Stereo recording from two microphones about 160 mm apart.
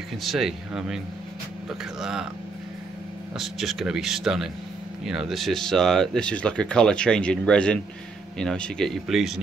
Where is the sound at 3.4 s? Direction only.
Centre (ahead or behind).